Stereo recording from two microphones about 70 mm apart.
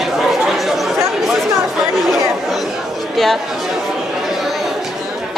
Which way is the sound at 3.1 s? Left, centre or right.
Centre.